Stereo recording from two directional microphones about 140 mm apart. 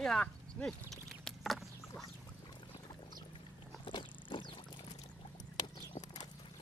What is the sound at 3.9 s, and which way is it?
Wild animals, 35° left (ahead or behind).